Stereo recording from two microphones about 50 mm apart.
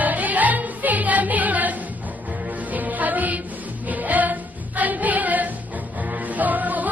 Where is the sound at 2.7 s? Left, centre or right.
Right.